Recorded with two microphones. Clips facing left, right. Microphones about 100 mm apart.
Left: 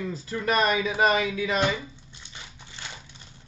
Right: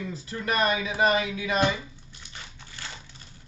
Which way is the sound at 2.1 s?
20° left (ahead or behind).